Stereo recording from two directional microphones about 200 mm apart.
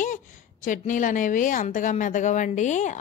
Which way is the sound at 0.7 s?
40° left (ahead or behind).